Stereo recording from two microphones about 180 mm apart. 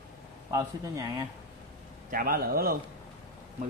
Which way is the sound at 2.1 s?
55° right (ahead or behind).